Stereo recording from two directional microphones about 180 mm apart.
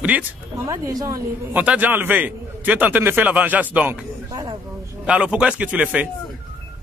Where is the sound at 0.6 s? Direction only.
20° right (ahead or behind).